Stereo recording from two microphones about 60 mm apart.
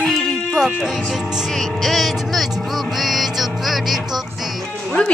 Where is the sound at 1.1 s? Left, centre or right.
Centre.